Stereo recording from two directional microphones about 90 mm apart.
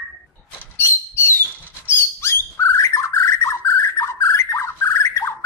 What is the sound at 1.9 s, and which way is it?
Bird, 25° left (ahead or behind).